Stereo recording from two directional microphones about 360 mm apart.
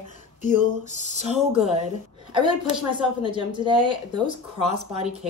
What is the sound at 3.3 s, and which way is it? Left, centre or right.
Speech, centre.